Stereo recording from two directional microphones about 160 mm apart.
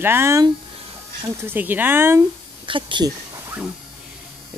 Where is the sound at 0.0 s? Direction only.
15° right (ahead or behind).